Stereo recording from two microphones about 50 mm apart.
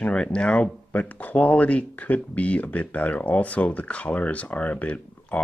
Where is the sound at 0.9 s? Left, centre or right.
Left.